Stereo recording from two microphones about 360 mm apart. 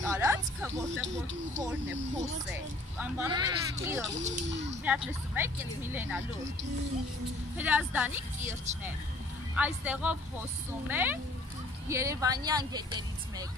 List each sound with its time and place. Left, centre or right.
0.0 s speech: centre
1.0 s speech: right
3.0 s speech: centre
4.2 s speech: right
5.0 s a woman's voice: centre
7.5 s a woman's voice: centre
9.6 s a woman's voice: centre